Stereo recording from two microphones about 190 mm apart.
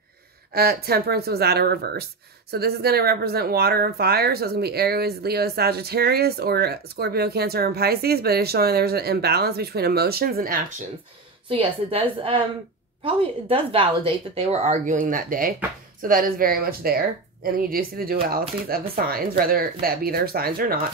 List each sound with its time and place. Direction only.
0.5 s speech: 55° right (ahead or behind)
11.4 s a woman's voice: 30° right (ahead or behind); by 20.8 s 50° right (ahead or behind)